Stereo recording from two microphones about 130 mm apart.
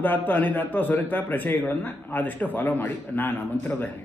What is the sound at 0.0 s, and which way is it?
A man's voice, 15° left (ahead or behind).